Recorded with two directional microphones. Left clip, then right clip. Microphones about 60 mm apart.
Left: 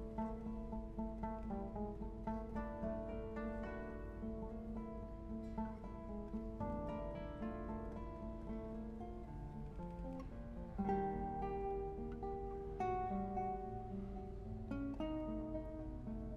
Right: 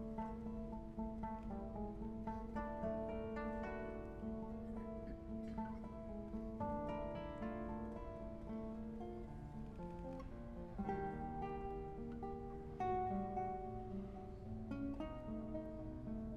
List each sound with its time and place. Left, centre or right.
2.3 s music: centre
10.8 s music: centre
12.7 s music: right
13.1 s music: centre
14.7 s music: right